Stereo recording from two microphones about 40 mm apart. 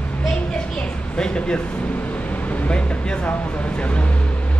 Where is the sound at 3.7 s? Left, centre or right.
Left.